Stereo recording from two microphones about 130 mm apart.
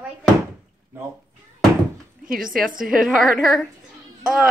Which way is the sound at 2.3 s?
90° right.